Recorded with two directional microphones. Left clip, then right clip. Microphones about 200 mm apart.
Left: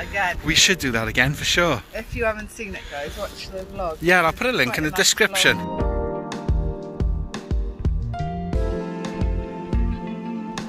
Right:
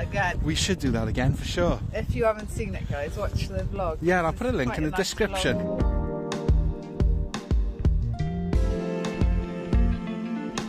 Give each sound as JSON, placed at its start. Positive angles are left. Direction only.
{"t": 0.5, "sound": "speech", "side_deg": -15}
{"t": 2.0, "sound": "speech", "side_deg": -45}
{"t": 2.9, "sound": "speech", "side_deg": -25}
{"t": 4.0, "sound": "speech", "side_deg": -10}
{"t": 5.8, "sound": "music", "side_deg": 5}